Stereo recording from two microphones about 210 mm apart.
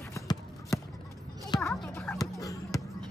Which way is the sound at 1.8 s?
5° left (ahead or behind).